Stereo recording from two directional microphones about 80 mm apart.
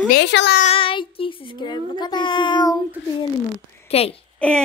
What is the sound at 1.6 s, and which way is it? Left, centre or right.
Speech, left.